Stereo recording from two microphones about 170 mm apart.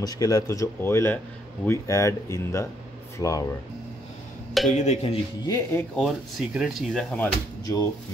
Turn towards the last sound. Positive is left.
turn(degrees=20)  # may be behind; listen again after turning